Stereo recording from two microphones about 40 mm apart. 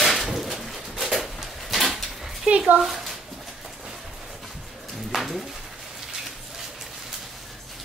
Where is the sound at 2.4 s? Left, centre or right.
Right.